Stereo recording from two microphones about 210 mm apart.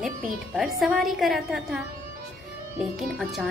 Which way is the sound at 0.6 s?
Centre (ahead or behind).